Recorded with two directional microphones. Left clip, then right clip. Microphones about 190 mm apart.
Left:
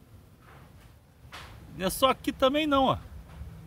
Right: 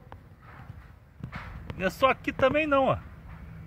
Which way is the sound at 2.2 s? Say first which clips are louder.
Right 1 dB; 30° left (ahead or behind).